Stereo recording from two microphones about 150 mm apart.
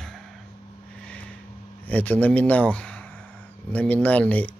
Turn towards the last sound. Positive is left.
turn(degrees=10)  # may be behind; listen again after turning